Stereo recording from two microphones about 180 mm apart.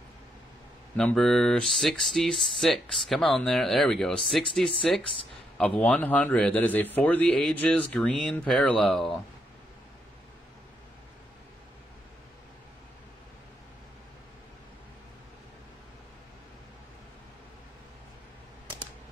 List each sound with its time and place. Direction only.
0.9 s speech: 5° left (ahead or behind)